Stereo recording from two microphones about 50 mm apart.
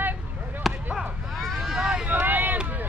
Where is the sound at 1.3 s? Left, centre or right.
Centre.